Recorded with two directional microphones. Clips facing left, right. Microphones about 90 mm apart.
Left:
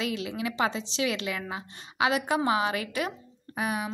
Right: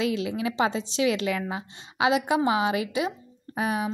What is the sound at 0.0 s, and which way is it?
A woman's voice, 30° right (ahead or behind).